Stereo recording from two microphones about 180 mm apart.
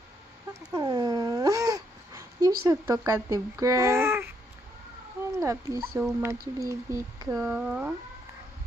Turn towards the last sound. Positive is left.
turn(degrees=-5)  # may be behind; listen again after turning